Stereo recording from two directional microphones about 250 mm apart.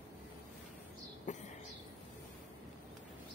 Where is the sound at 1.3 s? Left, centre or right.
Left.